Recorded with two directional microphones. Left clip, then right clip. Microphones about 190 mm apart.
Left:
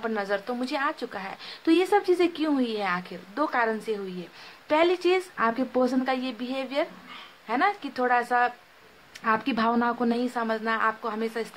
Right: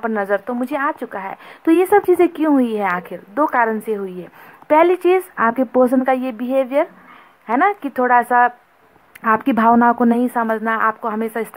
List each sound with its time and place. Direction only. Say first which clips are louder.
0.0 s speech: right 9 dB; 35° right (ahead or behind)